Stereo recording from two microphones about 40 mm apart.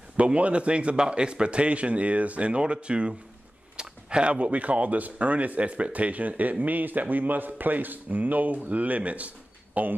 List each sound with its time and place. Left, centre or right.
0.2 s a man's voice: right
3.7 s a sound: right
4.3 s speech: right